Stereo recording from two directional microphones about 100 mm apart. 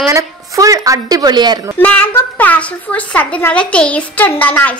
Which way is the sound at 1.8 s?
20° left (ahead or behind).